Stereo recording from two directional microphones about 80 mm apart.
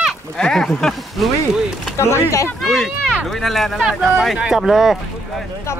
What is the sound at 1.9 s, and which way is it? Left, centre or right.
Speech, left.